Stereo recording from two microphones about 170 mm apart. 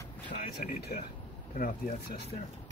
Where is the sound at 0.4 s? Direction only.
55° left (ahead or behind).